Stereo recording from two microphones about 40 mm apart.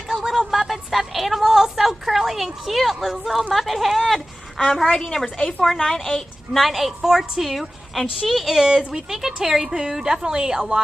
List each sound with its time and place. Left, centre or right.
0.1 s a woman's voice: centre
6.7 s a woman's voice: centre